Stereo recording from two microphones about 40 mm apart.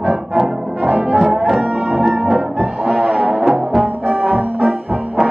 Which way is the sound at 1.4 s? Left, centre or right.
Centre.